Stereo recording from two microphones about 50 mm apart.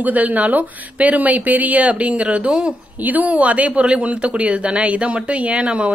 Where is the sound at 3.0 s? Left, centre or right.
Right.